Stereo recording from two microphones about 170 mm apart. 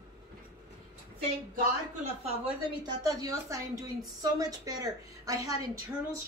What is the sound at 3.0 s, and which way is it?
A woman's voice, 20° right (ahead or behind).